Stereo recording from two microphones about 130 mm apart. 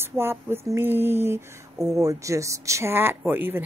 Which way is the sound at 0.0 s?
20° right (ahead or behind).